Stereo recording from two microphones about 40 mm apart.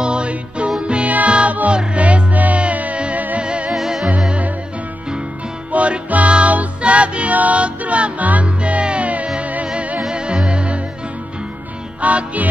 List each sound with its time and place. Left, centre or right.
0.0 s music: right
1.0 s music: right
3.7 s music: centre
5.7 s music: right
9.9 s music: right
12.0 s music: right